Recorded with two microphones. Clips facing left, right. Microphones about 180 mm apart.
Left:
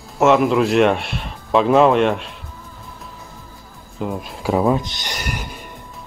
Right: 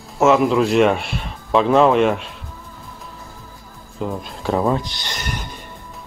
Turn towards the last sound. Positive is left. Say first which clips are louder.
# left 1 dB
turn(degrees=15)  # may be behind; listen again after turning